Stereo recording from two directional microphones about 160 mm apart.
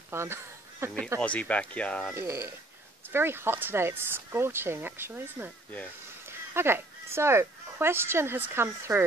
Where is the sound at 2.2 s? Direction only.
15° right (ahead or behind).